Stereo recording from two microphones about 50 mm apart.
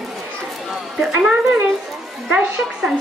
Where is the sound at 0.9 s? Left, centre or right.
Centre.